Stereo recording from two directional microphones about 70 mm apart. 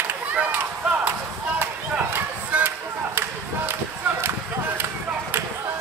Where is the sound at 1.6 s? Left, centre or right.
Right.